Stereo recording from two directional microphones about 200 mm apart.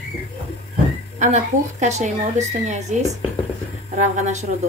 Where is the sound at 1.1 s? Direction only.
35° right (ahead or behind).